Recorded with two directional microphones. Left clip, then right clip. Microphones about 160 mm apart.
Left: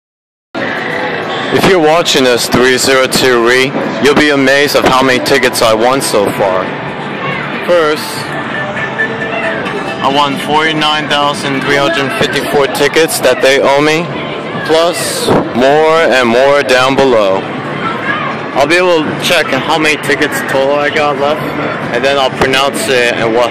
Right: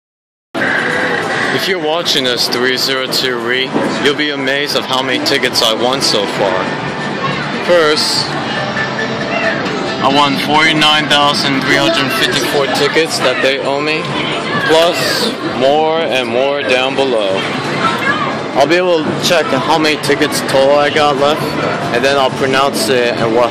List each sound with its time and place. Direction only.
1.7 s speech: 30° left (ahead or behind)
7.7 s speech: 10° left (ahead or behind)
10.0 s speech: 5° left (ahead or behind)
11.7 s speech: 15° left (ahead or behind)
12.8 s speech: 30° left (ahead or behind)
14.7 s speech: 15° left (ahead or behind)
15.6 s speech: 35° left (ahead or behind)
18.6 s speech: 10° left (ahead or behind)
20.5 s speech: 5° right (ahead or behind)
22.0 s speech: 5° left (ahead or behind)